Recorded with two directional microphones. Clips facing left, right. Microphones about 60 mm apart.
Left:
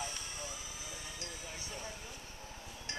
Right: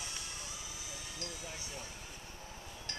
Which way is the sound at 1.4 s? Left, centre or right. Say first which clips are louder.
Left 1 dB; centre.